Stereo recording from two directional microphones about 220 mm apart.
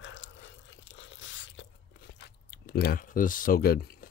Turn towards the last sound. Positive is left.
turn(degrees=45)  # may be behind; listen again after turning